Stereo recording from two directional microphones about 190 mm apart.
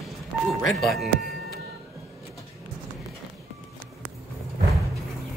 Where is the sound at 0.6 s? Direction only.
Centre (ahead or behind).